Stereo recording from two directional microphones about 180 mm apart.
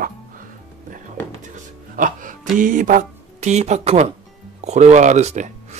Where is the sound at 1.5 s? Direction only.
45° right (ahead or behind).